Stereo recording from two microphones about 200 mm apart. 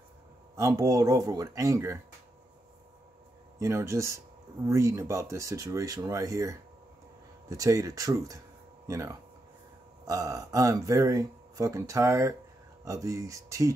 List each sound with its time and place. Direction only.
0.6 s speech: 15° right (ahead or behind)
3.5 s speech: 15° right (ahead or behind)